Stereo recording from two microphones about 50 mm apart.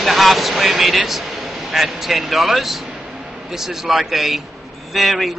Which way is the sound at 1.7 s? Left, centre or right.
Centre.